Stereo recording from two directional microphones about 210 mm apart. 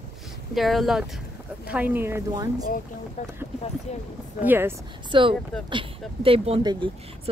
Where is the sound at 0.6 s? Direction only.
Centre (ahead or behind).